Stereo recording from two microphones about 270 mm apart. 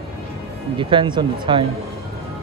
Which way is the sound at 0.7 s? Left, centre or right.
Centre.